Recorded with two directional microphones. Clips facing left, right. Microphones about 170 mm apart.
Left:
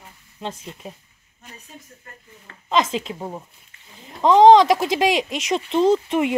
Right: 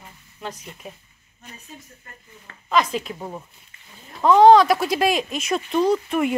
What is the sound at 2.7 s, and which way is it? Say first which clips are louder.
Speech: even; 25° left (ahead or behind).